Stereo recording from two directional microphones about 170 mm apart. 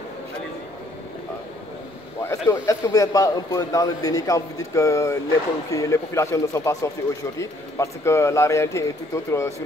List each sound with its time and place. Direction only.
2.2 s a man's voice: 15° left (ahead or behind)